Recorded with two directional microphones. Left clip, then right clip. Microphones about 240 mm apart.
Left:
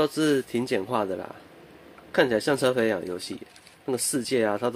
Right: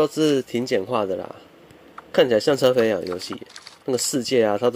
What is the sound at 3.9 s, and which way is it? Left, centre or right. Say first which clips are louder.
Speech: right 6 dB; centre.